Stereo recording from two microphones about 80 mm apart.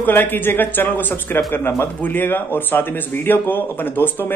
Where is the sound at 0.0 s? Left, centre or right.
Left.